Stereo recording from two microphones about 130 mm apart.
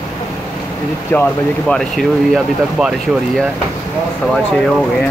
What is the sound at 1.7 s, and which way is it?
Speech, centre (ahead or behind).